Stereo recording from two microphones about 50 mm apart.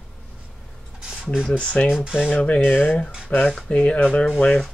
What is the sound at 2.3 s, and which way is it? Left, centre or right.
Speech, left.